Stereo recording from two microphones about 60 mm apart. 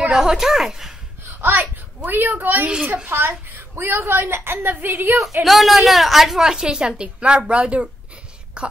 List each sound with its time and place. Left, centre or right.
0.1 s a woman's voice: centre
1.4 s a woman's voice: right
5.4 s a woman's voice: centre